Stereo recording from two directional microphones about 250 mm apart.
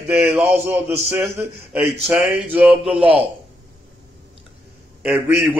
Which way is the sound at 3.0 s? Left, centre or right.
Right.